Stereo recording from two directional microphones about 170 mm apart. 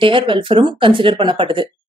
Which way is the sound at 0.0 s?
30° right (ahead or behind).